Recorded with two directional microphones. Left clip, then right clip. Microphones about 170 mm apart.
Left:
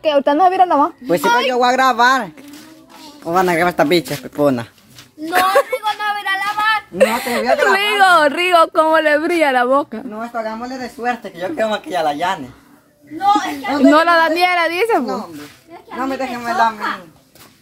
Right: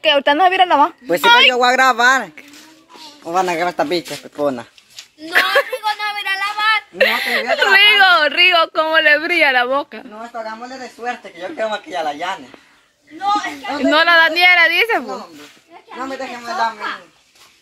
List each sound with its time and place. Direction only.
0.0 s speech: 10° right (ahead or behind)
1.5 s speech: 50° right (ahead or behind)
3.3 s speech: 40° right (ahead or behind)
3.6 s speech: 15° right (ahead or behind)
5.2 s speech: centre (ahead or behind)
5.8 s a sound: 65° left (ahead or behind)
7.0 s a woman's voice: 10° left (ahead or behind)
16.0 s a woman's voice: 20° right (ahead or behind)